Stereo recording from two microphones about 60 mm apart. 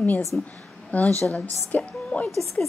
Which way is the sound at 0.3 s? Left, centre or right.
Left.